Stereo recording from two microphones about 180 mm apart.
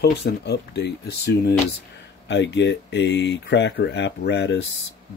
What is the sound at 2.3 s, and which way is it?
Speech, 75° left (ahead or behind).